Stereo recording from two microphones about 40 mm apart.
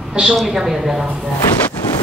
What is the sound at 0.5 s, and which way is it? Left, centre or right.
Speech, centre.